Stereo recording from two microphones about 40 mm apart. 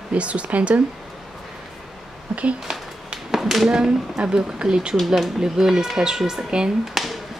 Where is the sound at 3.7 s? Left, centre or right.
Centre.